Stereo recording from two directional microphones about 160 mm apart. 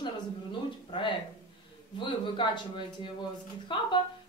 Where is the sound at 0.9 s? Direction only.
30° left (ahead or behind).